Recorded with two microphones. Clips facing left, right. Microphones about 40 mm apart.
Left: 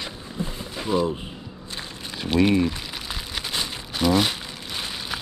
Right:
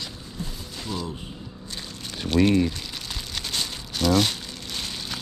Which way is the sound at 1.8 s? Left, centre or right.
Centre.